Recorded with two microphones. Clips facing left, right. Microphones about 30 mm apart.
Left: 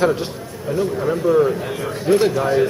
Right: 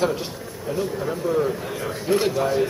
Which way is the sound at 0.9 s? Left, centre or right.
Left.